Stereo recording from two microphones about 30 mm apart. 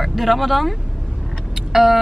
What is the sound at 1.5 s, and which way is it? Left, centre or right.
Vehicle, centre.